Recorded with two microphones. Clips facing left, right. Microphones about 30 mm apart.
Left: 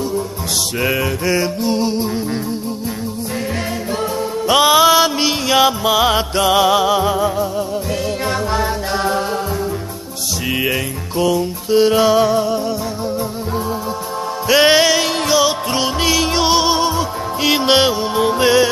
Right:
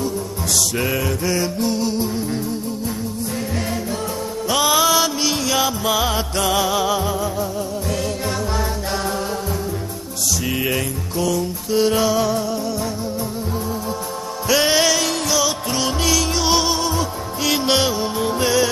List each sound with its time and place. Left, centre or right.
0.8 s music: left
4.5 s music: left
10.5 s music: left
14.5 s music: left